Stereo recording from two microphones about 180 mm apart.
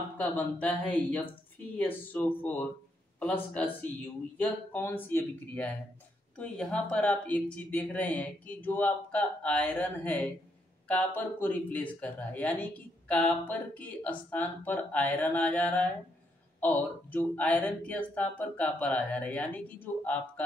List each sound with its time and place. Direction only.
0.2 s speech: 10° left (ahead or behind)